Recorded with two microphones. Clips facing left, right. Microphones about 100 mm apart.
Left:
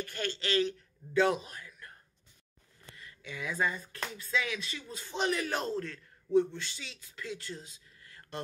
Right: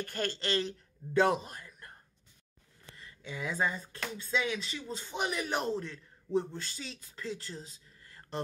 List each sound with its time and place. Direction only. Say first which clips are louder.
0.0 s a man's voice: right 1 dB; 45° right (ahead or behind)
3.0 s speech: right 2 dB; 30° right (ahead or behind)
5.1 s speech: left 2 dB; 15° right (ahead or behind)
6.3 s speech: left 5 dB; 40° right (ahead or behind)